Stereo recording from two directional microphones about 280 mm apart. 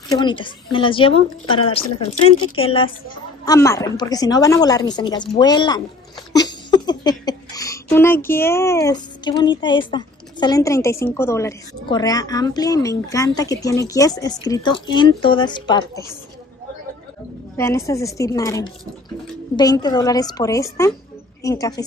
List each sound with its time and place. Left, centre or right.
0.1 s a woman's voice: centre
17.6 s a child's voice: centre